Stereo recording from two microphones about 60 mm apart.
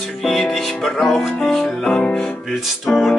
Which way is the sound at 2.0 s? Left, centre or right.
Centre.